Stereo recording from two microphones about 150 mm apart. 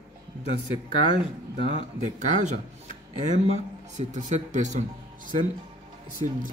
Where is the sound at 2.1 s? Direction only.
55° right (ahead or behind).